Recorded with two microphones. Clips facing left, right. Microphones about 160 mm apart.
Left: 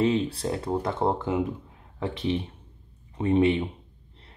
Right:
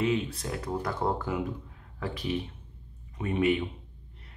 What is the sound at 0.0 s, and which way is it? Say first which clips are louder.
Speech: left 4 dB; 30° left (ahead or behind).